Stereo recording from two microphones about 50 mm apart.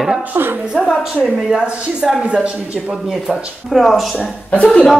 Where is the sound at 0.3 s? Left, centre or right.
Right.